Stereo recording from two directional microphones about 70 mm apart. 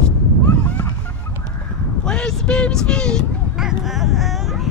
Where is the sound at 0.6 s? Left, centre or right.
Centre.